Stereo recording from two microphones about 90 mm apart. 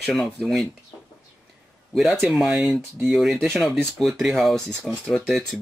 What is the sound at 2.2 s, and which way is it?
Speech, 10° right (ahead or behind).